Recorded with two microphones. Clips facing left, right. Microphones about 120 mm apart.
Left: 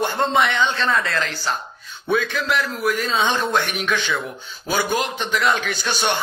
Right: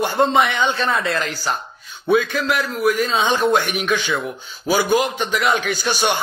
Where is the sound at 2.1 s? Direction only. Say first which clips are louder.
Right 3 dB; centre (ahead or behind).